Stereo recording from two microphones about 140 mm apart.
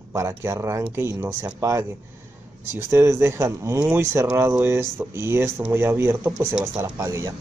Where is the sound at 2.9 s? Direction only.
20° right (ahead or behind).